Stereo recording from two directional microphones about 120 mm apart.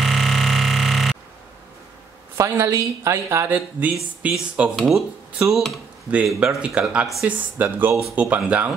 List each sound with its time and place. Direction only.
0.0 s music: centre (ahead or behind)
2.3 s speech: 25° right (ahead or behind); by 5.8 s centre (ahead or behind)
6.1 s speech: 10° right (ahead or behind)